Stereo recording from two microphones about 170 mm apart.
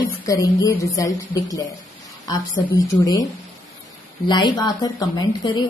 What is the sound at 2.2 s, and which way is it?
Speech, 20° left (ahead or behind).